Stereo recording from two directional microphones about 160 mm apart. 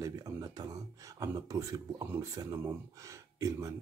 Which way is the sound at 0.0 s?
20° right (ahead or behind).